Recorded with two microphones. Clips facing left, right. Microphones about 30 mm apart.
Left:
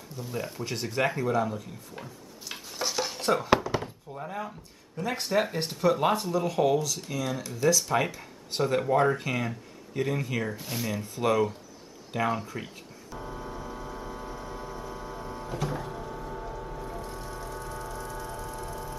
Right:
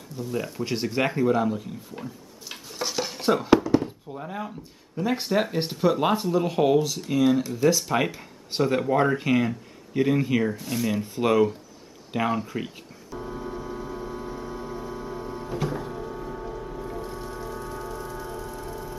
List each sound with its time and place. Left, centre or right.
0.2 s speech: centre
2.0 s dishes: centre
4.1 s speech: centre
6.3 s speech: right
10.5 s speech: centre
10.9 s speech: centre
13.1 s a sound: centre
17.0 s music: centre